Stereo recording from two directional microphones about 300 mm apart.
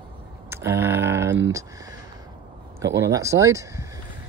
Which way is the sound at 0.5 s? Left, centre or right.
Centre.